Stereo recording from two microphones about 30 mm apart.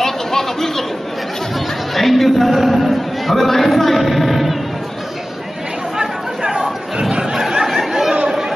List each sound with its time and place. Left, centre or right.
0.0 s a sound: centre
2.0 s a man's voice: centre
5.9 s chatter: right